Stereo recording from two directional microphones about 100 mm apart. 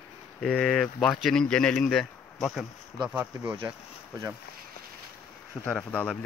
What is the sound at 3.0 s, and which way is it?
Speech, 10° right (ahead or behind).